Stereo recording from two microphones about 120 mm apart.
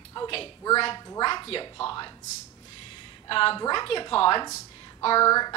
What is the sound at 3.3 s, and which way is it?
A woman's voice, 50° left (ahead or behind).